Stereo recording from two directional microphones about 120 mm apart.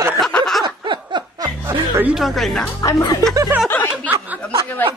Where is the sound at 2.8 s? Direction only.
25° left (ahead or behind).